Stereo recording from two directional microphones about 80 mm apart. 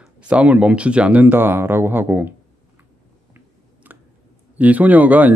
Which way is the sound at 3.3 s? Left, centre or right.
Right.